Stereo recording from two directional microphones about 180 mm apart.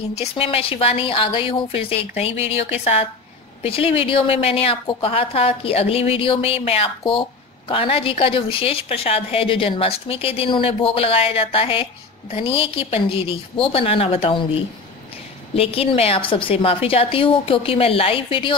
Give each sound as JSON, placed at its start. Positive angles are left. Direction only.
{"t": 0.2, "sound": "a woman's voice", "side_deg": 30}